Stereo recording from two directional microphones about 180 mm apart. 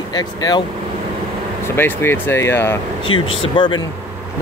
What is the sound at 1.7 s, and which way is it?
Speech, 10° left (ahead or behind).